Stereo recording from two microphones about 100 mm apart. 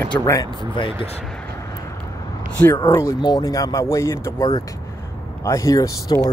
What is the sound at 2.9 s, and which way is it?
Speech, 30° left (ahead or behind).